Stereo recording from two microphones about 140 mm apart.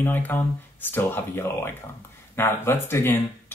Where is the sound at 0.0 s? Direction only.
15° left (ahead or behind).